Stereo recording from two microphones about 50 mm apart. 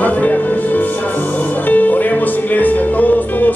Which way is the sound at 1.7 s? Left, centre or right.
Left.